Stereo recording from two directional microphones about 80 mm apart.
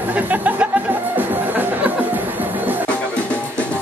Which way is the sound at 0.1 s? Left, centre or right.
Centre.